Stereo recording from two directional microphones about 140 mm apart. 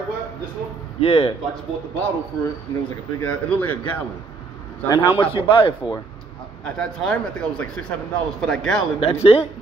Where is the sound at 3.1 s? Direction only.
15° left (ahead or behind).